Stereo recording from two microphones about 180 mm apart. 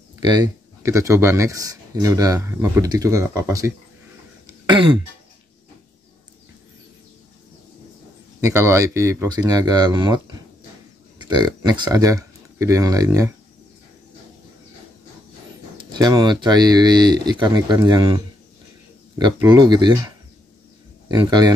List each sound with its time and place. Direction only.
0.2 s speech: 25° right (ahead or behind)
8.4 s speech: 15° right (ahead or behind)
15.8 s speech: 25° right (ahead or behind)
21.1 s speech: 25° right (ahead or behind)